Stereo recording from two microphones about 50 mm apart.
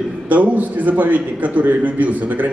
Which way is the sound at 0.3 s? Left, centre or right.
Right.